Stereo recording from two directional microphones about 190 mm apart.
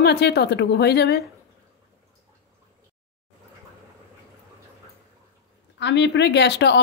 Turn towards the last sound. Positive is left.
turn(degrees=65)  # may be behind; listen again after turning